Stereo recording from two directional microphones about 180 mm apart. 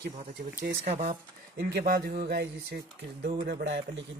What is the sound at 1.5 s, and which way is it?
A man's voice, 55° right (ahead or behind).